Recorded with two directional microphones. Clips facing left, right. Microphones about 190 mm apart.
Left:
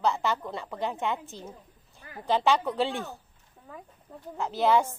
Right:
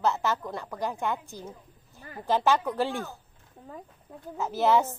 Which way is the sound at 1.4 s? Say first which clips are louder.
Right 1 dB; 15° left (ahead or behind).